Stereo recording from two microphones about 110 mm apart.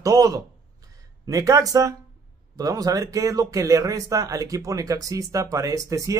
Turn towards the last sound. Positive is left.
turn(degrees=-30)  # may be behind; listen again after turning